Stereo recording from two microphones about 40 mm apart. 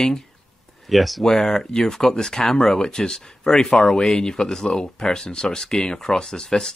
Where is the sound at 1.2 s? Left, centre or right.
Centre.